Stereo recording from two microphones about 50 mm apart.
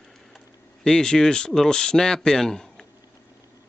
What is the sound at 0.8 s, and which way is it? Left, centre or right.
Speech, centre.